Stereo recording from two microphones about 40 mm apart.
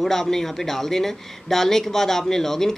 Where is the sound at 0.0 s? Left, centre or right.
Centre.